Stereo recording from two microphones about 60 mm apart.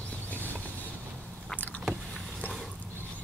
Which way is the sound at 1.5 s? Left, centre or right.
Left.